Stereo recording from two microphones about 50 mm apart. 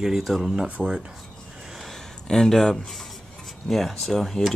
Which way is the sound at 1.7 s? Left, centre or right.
Centre.